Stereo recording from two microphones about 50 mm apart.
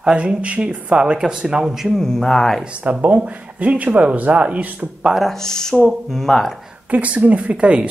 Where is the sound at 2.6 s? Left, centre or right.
Right.